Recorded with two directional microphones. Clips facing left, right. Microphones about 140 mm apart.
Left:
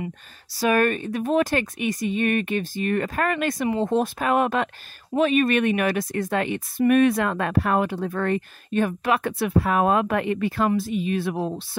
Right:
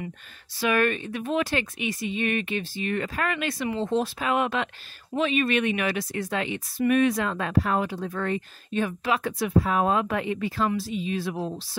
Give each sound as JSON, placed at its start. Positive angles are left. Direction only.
{"t": 0.6, "sound": "a woman's voice", "side_deg": 40}